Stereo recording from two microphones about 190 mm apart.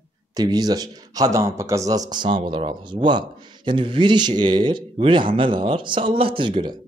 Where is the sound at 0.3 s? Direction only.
20° right (ahead or behind).